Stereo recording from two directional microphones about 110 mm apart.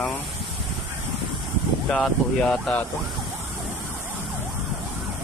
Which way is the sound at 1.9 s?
5° left (ahead or behind).